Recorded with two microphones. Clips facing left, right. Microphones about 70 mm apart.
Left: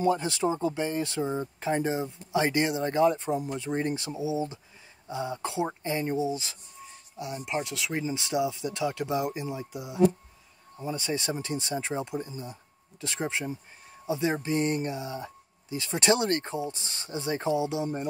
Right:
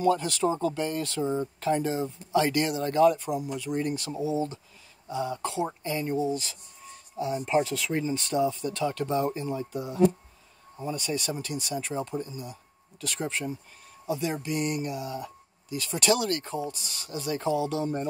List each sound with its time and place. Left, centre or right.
0.0 s speech: left
4.1 s speech: centre
7.6 s speech: centre
8.1 s speech: centre
10.9 s speech: left